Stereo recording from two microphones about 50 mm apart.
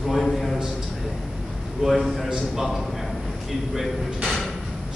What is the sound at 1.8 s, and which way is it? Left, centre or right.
Speech, centre.